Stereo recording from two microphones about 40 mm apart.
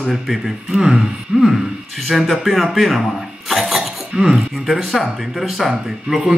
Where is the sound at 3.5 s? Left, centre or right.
Centre.